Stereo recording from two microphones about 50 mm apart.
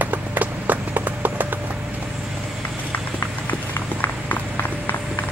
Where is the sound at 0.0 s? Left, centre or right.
Right.